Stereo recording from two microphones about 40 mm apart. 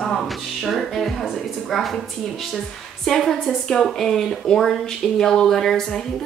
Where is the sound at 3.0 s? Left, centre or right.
Centre.